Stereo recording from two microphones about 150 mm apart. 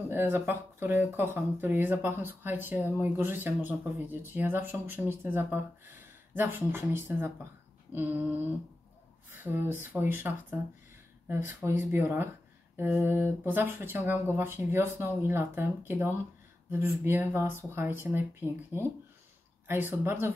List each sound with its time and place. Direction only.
0.1 s speech: 15° right (ahead or behind)
9.3 s speech: 15° right (ahead or behind)